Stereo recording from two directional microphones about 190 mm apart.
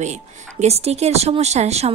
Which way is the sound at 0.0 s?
35° right (ahead or behind).